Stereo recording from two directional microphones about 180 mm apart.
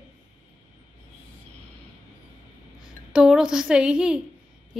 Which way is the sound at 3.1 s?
5° right (ahead or behind).